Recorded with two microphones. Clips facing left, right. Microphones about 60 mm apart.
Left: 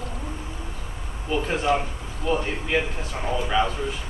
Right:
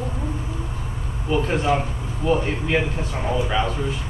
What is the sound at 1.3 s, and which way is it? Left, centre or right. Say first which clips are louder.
A man's voice: right 2 dB; centre.